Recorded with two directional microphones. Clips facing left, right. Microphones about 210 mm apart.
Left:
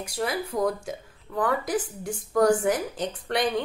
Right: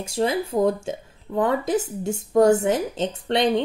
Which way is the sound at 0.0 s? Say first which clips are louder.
Right 6 dB; 25° right (ahead or behind).